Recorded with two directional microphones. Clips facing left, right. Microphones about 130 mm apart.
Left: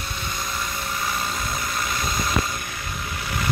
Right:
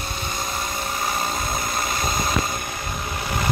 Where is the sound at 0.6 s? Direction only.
30° right (ahead or behind).